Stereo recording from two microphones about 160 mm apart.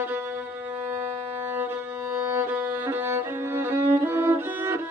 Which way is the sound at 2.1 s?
15° right (ahead or behind).